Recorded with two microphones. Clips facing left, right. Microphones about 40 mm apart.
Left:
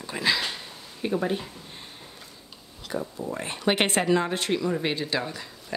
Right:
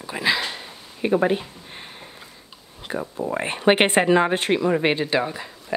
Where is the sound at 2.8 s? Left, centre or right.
Right.